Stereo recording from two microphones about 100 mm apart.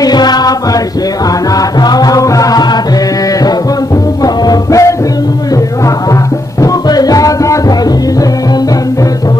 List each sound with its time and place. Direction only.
0.0 s music: 45° left (ahead or behind)
4.2 s music: 35° left (ahead or behind)
6.6 s music: 40° left (ahead or behind)